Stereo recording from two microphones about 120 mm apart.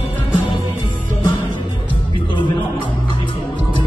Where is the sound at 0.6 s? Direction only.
15° right (ahead or behind).